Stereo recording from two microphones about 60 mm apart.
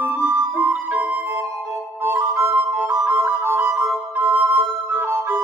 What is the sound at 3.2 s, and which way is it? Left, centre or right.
Music, right.